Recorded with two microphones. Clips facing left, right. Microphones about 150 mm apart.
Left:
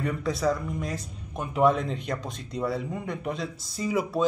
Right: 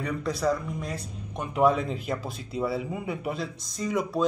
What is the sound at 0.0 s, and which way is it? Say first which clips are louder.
Speech: left 1 dB; centre (ahead or behind).